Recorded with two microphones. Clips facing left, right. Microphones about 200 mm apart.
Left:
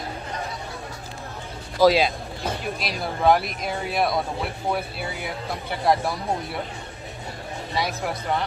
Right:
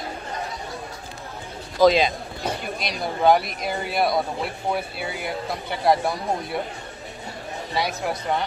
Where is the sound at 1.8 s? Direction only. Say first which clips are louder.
Right 1 dB; 5° left (ahead or behind).